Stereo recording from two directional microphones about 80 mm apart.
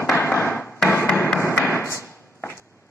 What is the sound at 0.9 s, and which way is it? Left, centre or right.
Tap, left.